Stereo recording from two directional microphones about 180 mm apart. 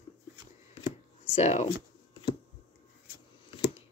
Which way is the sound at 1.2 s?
35° left (ahead or behind).